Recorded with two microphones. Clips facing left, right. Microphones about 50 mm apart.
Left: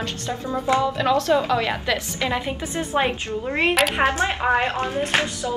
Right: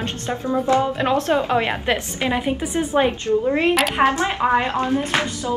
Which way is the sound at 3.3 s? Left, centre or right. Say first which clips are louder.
Right 9 dB; centre.